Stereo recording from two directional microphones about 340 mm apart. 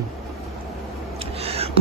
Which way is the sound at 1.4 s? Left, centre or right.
Centre.